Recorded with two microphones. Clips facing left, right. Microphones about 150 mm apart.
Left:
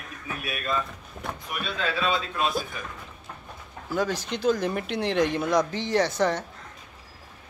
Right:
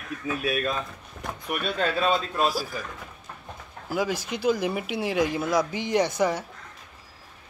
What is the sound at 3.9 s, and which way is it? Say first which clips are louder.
Speech: even; 10° right (ahead or behind).